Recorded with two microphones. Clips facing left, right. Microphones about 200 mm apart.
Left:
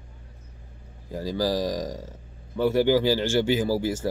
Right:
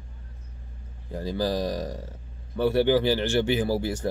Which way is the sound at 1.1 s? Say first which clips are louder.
Left 1 dB; 15° left (ahead or behind).